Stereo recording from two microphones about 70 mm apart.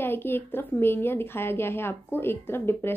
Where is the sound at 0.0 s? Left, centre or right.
Left.